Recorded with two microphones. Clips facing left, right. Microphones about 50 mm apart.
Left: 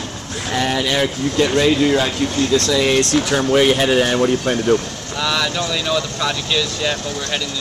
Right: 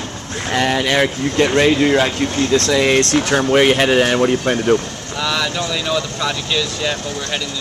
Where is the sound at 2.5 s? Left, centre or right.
Right.